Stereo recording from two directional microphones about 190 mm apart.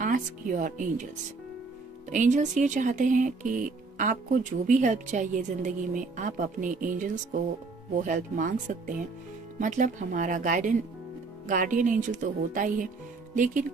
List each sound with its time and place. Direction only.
0.0 s speech: 45° right (ahead or behind)
2.0 s speech: 40° right (ahead or behind)